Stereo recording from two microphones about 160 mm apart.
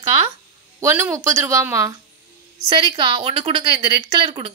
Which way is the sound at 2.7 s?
30° right (ahead or behind).